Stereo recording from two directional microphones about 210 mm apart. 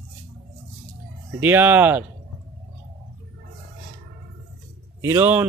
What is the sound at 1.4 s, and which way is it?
Speech, 10° right (ahead or behind).